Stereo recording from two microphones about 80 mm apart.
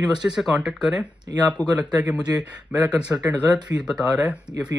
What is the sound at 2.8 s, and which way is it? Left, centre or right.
Speech, centre.